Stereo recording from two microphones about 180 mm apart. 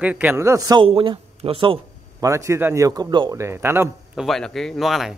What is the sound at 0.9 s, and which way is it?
Speech, 30° right (ahead or behind).